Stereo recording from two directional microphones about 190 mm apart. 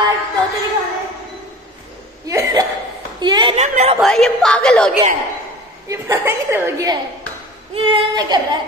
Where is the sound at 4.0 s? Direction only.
Centre (ahead or behind).